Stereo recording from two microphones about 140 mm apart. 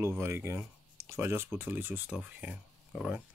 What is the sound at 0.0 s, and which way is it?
Speech, 20° right (ahead or behind).